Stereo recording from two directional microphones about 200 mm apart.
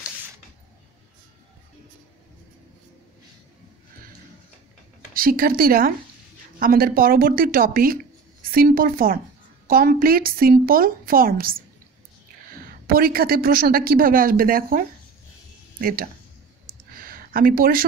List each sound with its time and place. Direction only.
5.1 s speech: 45° right (ahead or behind)
12.8 s speech: 45° right (ahead or behind)
17.0 s a sound: 45° right (ahead or behind)